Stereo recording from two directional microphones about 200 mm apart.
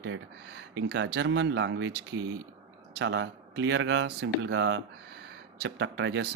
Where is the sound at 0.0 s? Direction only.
60° right (ahead or behind).